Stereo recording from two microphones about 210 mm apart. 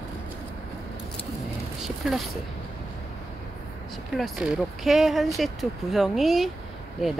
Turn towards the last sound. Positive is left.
turn(degrees=0)  # may be behind; listen again after turning